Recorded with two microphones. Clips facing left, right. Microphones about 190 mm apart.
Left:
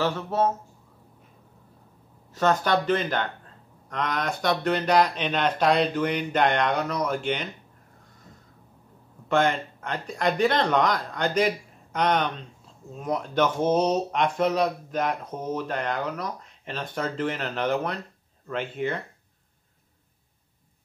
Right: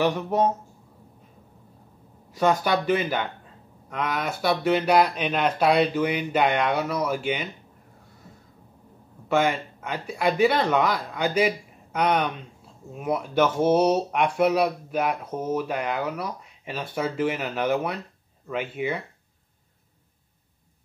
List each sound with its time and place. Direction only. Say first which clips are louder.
0.0 s speech: right 2 dB; 15° right (ahead or behind)
2.3 s speech: right 1 dB; 10° right (ahead or behind)
9.3 s speech: even; 5° right (ahead or behind)